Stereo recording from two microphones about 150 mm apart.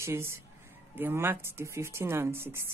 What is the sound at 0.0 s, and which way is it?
Speech, 15° right (ahead or behind).